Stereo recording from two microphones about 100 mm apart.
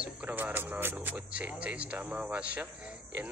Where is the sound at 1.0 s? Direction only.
15° right (ahead or behind).